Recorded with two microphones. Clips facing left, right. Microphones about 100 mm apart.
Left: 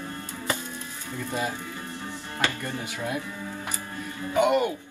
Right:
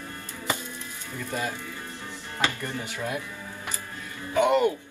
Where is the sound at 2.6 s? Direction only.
20° left (ahead or behind).